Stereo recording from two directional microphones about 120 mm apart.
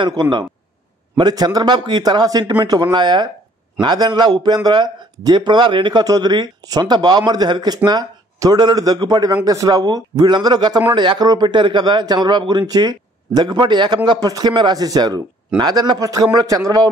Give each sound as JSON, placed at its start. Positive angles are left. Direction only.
{"t": 0.0, "sound": "speech", "side_deg": -35}